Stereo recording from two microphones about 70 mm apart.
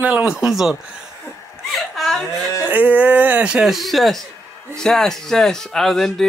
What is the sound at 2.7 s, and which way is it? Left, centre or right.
Speech, right.